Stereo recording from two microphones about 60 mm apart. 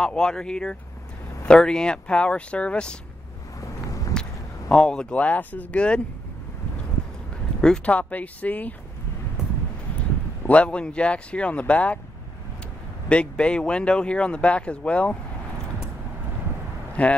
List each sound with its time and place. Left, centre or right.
0.0 s speech: centre
4.1 s a sound: centre
5.1 s speech: left
7.6 s speech: centre
7.9 s speech: left
9.9 s speech: left
13.1 s speech: centre
17.0 s speech: left